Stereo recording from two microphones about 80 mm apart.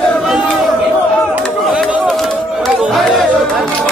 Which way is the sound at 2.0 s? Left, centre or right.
Centre.